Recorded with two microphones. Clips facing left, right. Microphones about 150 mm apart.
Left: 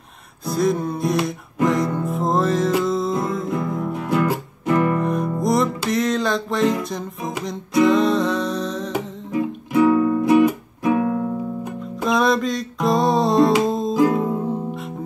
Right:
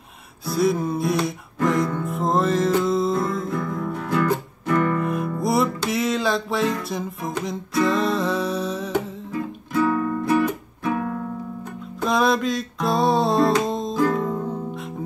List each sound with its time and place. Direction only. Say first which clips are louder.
0.5 s music: left 1 dB; 5° right (ahead or behind)
3.4 s music: left 2 dB; 20° left (ahead or behind)
5.0 s music: left 3 dB; 5° right (ahead or behind)
9.3 s music: left 6 dB; 15° left (ahead or behind)
12.0 s music: left 1 dB; centre (ahead or behind)
13.9 s music: left 3 dB; 15° left (ahead or behind)
14.7 s music: left 2 dB; centre (ahead or behind)